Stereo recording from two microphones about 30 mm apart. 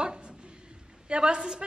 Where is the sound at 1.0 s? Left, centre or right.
Right.